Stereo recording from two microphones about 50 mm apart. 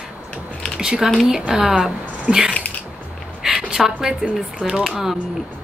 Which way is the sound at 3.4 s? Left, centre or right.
Centre.